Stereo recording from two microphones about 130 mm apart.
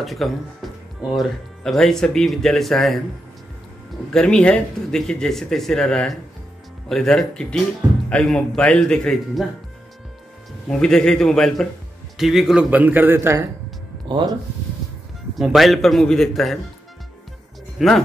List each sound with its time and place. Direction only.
0.0 s speech: centre (ahead or behind)
4.1 s a man's voice: 5° left (ahead or behind)
10.7 s a man's voice: 5° left (ahead or behind); by 13.5 s 20° right (ahead or behind)
14.0 s speech: 35° right (ahead or behind)
15.3 s speech: centre (ahead or behind)
17.7 s speech: centre (ahead or behind)